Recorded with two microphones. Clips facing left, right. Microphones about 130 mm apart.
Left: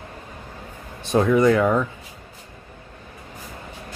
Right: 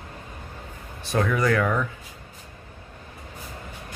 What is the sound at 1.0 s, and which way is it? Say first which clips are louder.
Speech: left 6 dB; 20° left (ahead or behind).